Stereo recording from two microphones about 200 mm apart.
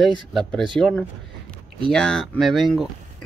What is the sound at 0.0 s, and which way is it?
Speech, centre (ahead or behind).